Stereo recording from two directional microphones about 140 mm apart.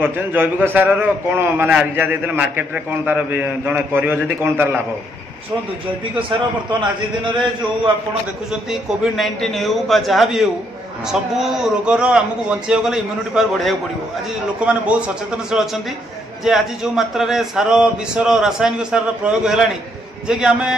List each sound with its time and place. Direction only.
0.0 s a man's voice: 10° right (ahead or behind)
7.2 s a man's voice: 35° right (ahead or behind)
8.5 s a man's voice: 5° right (ahead or behind)